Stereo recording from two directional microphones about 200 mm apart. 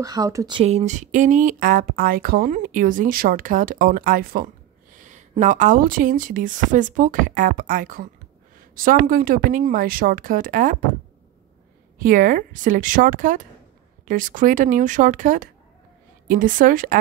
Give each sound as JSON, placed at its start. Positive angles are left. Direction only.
{"t": 0.0, "sound": "speech", "side_deg": -20}
{"t": 0.6, "sound": "speech", "side_deg": -30}
{"t": 12.0, "sound": "speech", "side_deg": -40}